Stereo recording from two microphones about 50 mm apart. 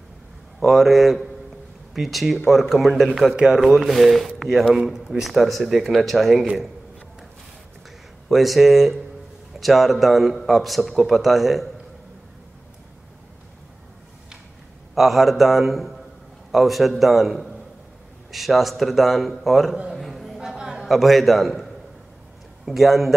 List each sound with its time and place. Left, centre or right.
0.6 s a man's voice: centre
3.3 s a man's voice: centre
3.6 s a man's voice: centre
8.3 s a man's voice: centre
15.0 s a man's voice: centre
19.9 s a sound: centre
20.3 s a sound: centre
20.8 s a man's voice: centre
22.7 s a man's voice: centre